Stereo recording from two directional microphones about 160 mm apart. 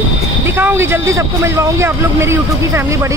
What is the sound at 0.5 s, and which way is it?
Speech, 15° right (ahead or behind).